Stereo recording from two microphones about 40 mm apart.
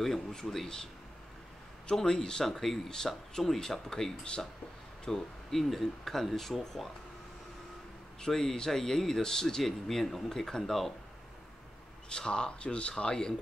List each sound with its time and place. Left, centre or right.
0.0 s speech: centre
1.9 s speech: centre
2.4 s speech: centre
8.2 s speech: centre
12.1 s speech: centre